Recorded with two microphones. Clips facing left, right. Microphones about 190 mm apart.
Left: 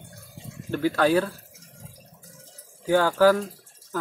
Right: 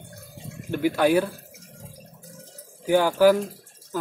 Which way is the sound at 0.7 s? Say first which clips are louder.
Right 1 dB; 15° right (ahead or behind).